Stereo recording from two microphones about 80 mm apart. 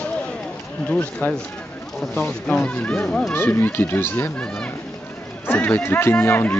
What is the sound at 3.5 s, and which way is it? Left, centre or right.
Speech, left.